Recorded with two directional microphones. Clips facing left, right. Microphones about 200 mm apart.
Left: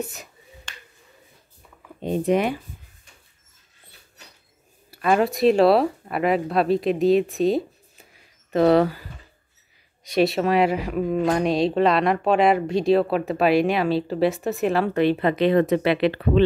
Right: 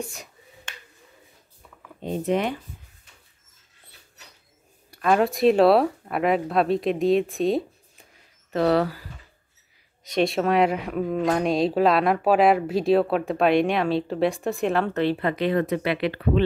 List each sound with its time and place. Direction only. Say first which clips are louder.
0.1 s finger snapping: left 1 dB; centre (ahead or behind)
2.0 s speech: left 3 dB; 15° left (ahead or behind)
4.9 s speech: left 1 dB; centre (ahead or behind)
8.5 s speech: left 4 dB; 15° left (ahead or behind)
10.0 s speech: left 2 dB; 5° left (ahead or behind)
15.0 s speech: left 4 dB; 20° left (ahead or behind)